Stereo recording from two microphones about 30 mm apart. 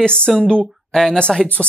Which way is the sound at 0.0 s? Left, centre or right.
Left.